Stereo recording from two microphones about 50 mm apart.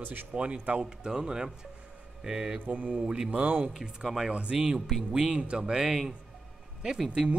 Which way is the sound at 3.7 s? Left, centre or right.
Centre.